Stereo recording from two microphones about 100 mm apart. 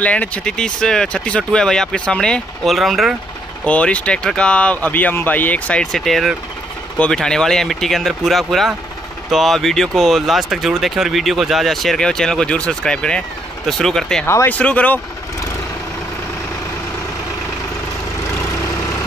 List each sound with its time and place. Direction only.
0.0 s speech: 15° left (ahead or behind)
3.6 s speech: 10° left (ahead or behind)
14.2 s speech: 25° left (ahead or behind)